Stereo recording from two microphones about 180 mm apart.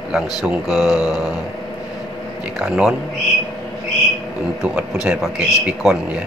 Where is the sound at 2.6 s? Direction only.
5° right (ahead or behind).